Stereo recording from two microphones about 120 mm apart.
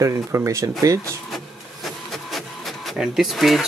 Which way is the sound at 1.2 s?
Centre (ahead or behind).